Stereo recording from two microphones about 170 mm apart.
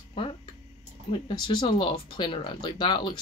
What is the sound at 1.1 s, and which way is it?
Speech, 30° left (ahead or behind).